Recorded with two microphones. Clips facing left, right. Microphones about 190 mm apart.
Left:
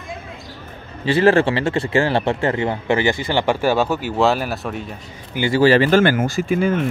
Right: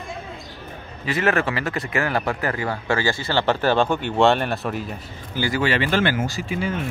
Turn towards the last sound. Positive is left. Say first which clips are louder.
# left 7 dB
turn(degrees=50)  # may be behind; listen again after turning